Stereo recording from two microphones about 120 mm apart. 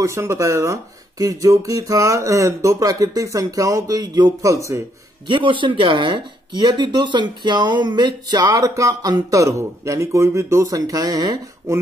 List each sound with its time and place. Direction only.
0.0 s speech: 25° right (ahead or behind)
5.3 s speech: 40° right (ahead or behind)